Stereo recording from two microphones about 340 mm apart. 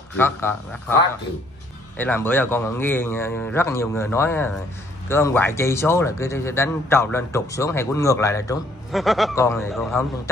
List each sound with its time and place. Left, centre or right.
0.2 s a man's voice: centre
2.0 s a man's voice: centre